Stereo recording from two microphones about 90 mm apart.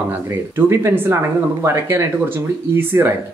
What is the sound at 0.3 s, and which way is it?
Speech, 25° right (ahead or behind).